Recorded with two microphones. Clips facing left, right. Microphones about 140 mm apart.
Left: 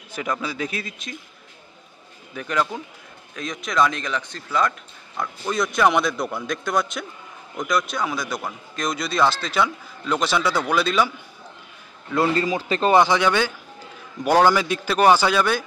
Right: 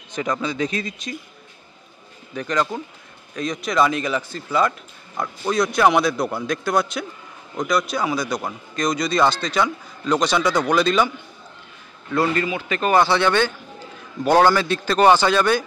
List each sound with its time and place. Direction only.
0.1 s speech: 5° left (ahead or behind)
2.3 s a man's voice: 5° left (ahead or behind)
12.2 s a man's voice: 35° left (ahead or behind)
12.9 s a man's voice: 15° left (ahead or behind)